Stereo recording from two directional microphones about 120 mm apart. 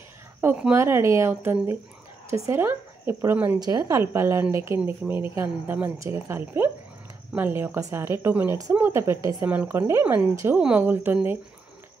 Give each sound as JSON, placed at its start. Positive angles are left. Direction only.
{"t": 0.4, "sound": "a woman's voice", "side_deg": -15}
{"t": 3.5, "sound": "a woman's voice", "side_deg": -30}